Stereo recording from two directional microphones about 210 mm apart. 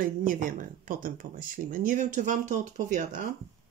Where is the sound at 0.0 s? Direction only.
40° right (ahead or behind).